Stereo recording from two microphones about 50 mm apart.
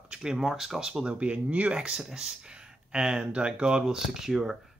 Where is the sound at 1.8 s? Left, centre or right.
Centre.